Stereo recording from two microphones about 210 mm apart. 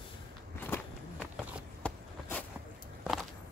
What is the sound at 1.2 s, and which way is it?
Run, centre (ahead or behind).